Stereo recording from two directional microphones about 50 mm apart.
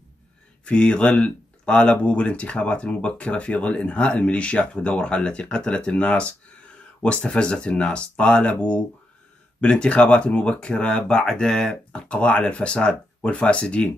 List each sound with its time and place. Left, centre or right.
0.7 s speech: left